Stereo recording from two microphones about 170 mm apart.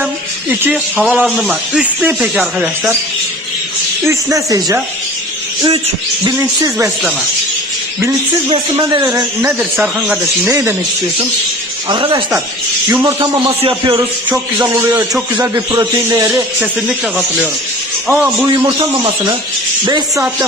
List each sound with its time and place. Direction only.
0.0 s speech: 10° right (ahead or behind)
4.1 s speech: 20° right (ahead or behind)
6.3 s a man's voice: 15° right (ahead or behind)
8.5 s speech: 25° right (ahead or behind)
9.6 s speech: 5° right (ahead or behind)
10.5 s a man's voice: 15° right (ahead or behind)
11.9 s speech: 25° right (ahead or behind)
13.2 s speech: 30° right (ahead or behind)
14.3 s a man's voice: 15° right (ahead or behind)
18.0 s a man's voice: 10° right (ahead or behind)
19.8 s speech: 20° right (ahead or behind)